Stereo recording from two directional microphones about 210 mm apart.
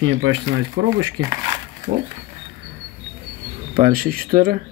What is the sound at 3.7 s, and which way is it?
Speech, 45° right (ahead or behind).